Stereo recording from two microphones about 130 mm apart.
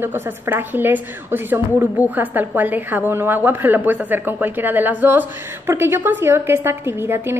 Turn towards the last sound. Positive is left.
turn(degrees=-15)  # may be behind; listen again after turning